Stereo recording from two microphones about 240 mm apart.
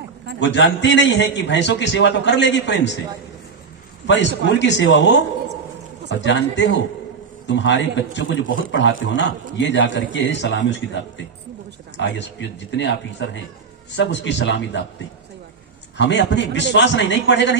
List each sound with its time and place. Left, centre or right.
0.4 s a man's voice: left
4.1 s a man's voice: left
16.0 s a man's voice: left